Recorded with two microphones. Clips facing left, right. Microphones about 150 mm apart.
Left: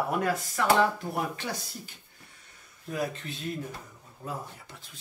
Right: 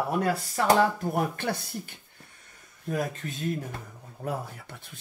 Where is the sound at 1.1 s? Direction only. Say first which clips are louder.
Right 4 dB; 55° right (ahead or behind).